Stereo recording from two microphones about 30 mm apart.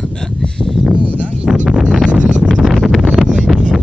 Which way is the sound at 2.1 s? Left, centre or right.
Right.